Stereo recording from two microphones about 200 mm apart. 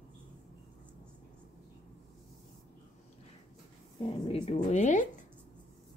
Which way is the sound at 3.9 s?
25° left (ahead or behind).